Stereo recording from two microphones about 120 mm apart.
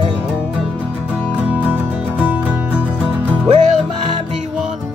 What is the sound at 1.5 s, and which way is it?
Music, 10° right (ahead or behind).